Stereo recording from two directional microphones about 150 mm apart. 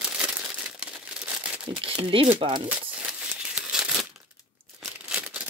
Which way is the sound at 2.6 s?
5° right (ahead or behind).